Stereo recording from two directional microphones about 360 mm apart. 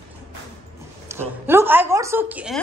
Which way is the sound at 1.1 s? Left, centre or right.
Centre.